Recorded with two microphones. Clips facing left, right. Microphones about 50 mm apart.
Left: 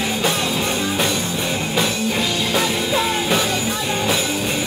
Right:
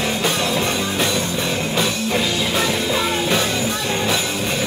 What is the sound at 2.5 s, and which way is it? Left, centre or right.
Music, centre.